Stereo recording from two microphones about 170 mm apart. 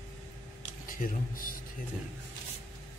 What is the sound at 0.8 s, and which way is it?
Speech, 55° left (ahead or behind).